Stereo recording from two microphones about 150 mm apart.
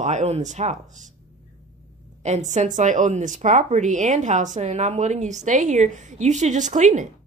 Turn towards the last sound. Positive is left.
turn(degrees=-55)  # may be behind; listen again after turning